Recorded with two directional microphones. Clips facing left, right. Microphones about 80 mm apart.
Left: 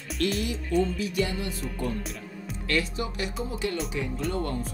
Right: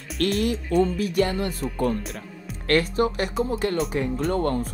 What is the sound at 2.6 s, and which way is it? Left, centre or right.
Speech, right.